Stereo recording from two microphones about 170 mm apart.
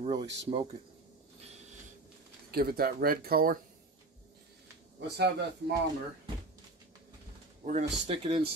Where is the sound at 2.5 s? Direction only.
65° right (ahead or behind).